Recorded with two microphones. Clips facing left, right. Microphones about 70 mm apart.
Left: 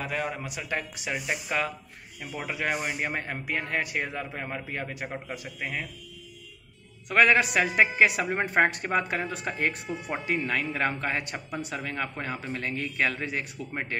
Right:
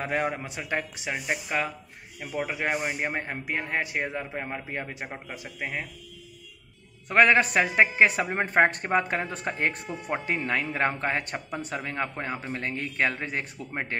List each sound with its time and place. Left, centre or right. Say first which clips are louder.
0.0 s speech: right 3 dB; right
7.1 s a man's voice: right 1 dB; right
9.8 s speech: right 1 dB; right
10.2 s a man's voice: left 1 dB; right